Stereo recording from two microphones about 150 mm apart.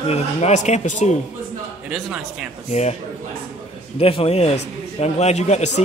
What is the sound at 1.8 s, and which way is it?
Speech, 10° right (ahead or behind).